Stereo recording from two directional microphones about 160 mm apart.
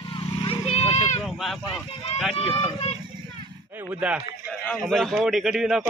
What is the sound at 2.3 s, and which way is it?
Speech, 35° left (ahead or behind).